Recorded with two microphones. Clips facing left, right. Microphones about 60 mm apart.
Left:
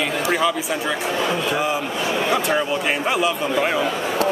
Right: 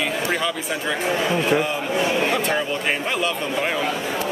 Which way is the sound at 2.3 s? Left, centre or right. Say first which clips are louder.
Left 2 dB; centre.